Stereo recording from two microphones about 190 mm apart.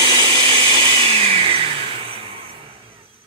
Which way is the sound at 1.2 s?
30° right (ahead or behind).